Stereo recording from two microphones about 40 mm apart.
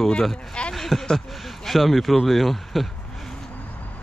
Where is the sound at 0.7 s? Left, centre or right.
Centre.